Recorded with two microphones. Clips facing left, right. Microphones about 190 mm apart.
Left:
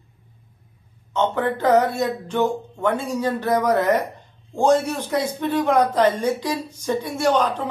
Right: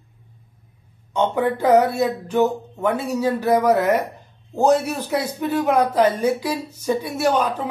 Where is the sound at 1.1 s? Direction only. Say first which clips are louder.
Right 2 dB; 10° right (ahead or behind).